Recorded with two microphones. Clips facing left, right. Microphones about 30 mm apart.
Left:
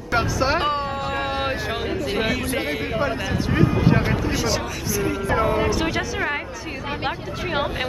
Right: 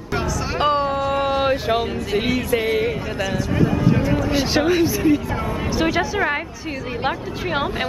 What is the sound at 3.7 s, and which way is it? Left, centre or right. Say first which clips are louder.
Vehicle: right 1 dB; left.